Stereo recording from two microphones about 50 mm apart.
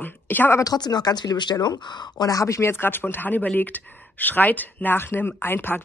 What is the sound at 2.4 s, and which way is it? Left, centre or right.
Speech, left.